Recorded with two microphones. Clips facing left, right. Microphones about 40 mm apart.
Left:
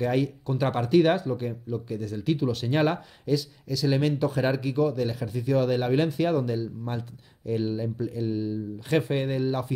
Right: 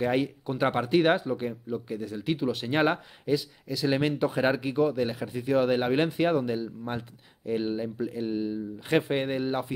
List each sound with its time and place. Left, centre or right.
0.0 s speech: right